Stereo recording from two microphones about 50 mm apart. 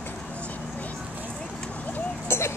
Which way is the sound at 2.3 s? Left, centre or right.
Left.